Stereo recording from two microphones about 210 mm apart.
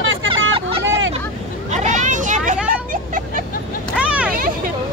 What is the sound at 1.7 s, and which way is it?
Vehicle, 35° right (ahead or behind).